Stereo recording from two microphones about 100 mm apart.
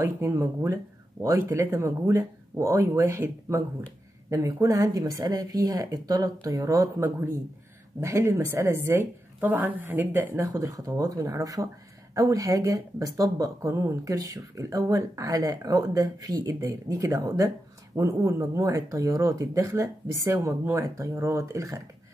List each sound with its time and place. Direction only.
0.0 s speech: 25° right (ahead or behind)